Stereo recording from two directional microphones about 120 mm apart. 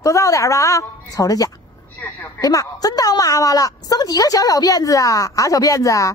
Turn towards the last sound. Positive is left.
turn(degrees=25)  # may be behind; listen again after turning